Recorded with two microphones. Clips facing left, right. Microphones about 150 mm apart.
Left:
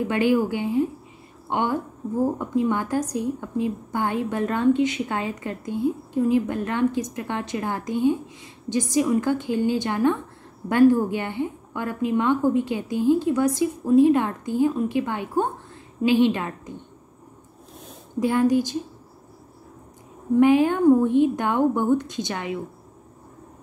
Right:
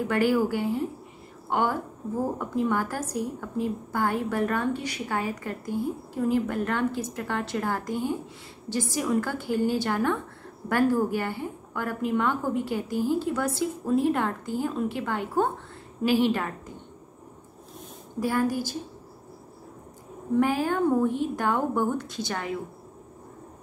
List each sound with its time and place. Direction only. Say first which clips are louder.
0.1 s a woman's voice: left 2 dB; 20° left (ahead or behind)
18.2 s a woman's voice: left 6 dB; 20° left (ahead or behind)
20.3 s a woman's voice: left 7 dB; 20° left (ahead or behind)